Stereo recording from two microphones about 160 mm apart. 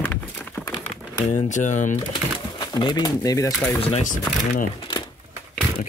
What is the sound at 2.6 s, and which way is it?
Speech, 25° left (ahead or behind).